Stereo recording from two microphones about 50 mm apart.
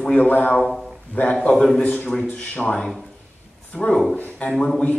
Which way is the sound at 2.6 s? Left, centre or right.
Centre.